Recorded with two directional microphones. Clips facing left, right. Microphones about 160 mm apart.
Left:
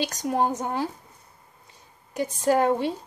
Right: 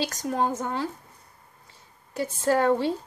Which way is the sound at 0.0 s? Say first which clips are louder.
Left 2 dB; 20° left (ahead or behind).